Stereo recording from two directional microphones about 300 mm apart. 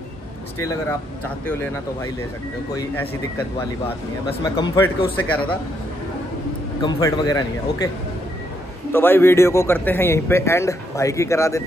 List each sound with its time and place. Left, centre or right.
0.6 s a man's voice: centre
2.7 s a man's voice: centre
4.4 s a man's voice: centre
6.8 s a man's voice: centre
8.9 s a man's voice: centre